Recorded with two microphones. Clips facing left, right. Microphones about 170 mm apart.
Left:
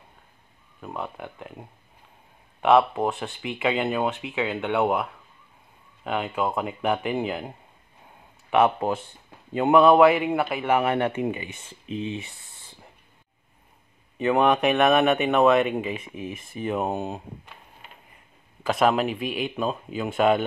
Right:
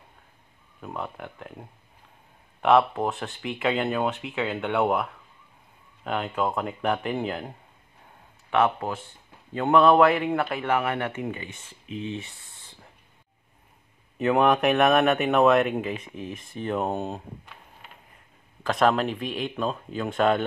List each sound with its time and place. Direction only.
0.7 s speech: centre (ahead or behind)
10.8 s speech: 25° left (ahead or behind)
14.1 s speech: centre (ahead or behind)
18.6 s speech: 5° left (ahead or behind)